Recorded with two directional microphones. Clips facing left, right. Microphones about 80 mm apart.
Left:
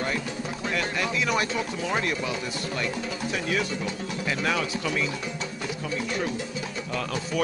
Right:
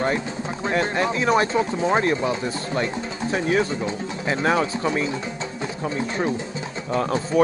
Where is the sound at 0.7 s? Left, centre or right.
Right.